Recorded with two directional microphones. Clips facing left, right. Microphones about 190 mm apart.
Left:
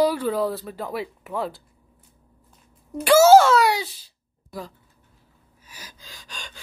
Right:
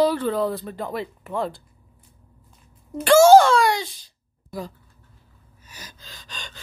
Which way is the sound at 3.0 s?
10° left (ahead or behind).